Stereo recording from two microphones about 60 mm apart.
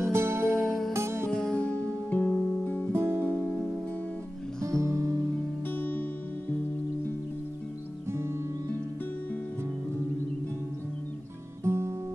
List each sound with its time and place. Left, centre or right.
0.0 s music: right
0.6 s music: centre
0.9 s music: right
1.3 s music: centre; by 2.9 s left
2.9 s music: right
4.6 s music: right
5.7 s music: left
11.6 s music: right